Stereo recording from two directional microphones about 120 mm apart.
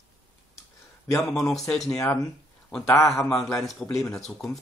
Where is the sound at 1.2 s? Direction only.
5° left (ahead or behind).